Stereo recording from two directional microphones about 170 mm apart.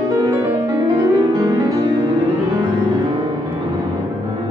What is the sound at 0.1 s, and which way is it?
Music, 20° right (ahead or behind).